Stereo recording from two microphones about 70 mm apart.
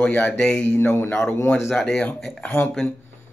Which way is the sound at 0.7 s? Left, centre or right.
Left.